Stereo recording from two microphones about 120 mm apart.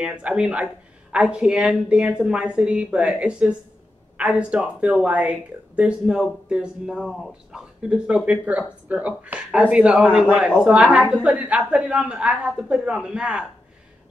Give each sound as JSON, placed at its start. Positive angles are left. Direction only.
{"t": 0.0, "sound": "speech", "side_deg": -10}